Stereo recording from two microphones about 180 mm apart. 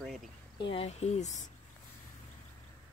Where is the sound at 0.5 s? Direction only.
30° left (ahead or behind).